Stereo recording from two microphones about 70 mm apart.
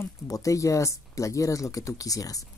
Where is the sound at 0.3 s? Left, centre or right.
Left.